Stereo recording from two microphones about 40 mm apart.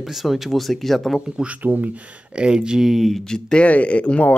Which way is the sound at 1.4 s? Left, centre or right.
Right.